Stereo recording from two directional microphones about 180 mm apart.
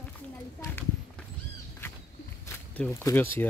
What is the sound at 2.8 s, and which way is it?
Speech, 10° left (ahead or behind).